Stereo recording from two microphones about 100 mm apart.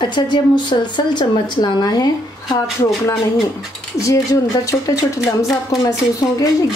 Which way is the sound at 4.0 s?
35° left (ahead or behind).